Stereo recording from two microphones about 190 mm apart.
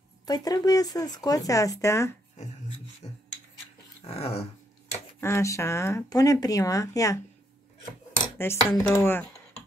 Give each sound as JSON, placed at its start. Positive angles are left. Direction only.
{"t": 0.2, "sound": "speech", "side_deg": 20}
{"t": 4.0, "sound": "dog", "side_deg": 30}
{"t": 5.2, "sound": "speech", "side_deg": 15}
{"t": 8.4, "sound": "speech", "side_deg": 15}